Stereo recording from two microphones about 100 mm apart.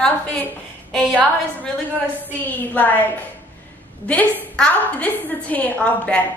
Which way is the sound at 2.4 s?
20° left (ahead or behind).